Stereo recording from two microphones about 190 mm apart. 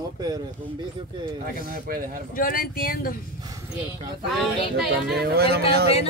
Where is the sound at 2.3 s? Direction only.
50° left (ahead or behind).